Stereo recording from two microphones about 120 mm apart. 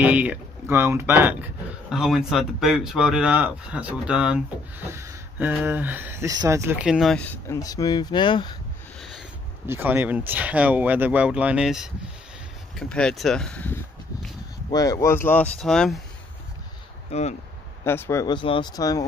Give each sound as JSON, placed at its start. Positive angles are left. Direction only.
{"t": 0.0, "sound": "speech", "side_deg": -10}
{"t": 1.9, "sound": "speech", "side_deg": -5}
{"t": 6.2, "sound": "speech", "side_deg": -30}
{"t": 6.8, "sound": "speech", "side_deg": -5}
{"t": 7.4, "sound": "speech", "side_deg": 30}
{"t": 9.7, "sound": "speech", "side_deg": -20}
{"t": 14.7, "sound": "speech", "side_deg": 30}
{"t": 17.1, "sound": "speech", "side_deg": 65}
{"t": 17.8, "sound": "speech", "side_deg": 20}
{"t": 18.2, "sound": "speech", "side_deg": 45}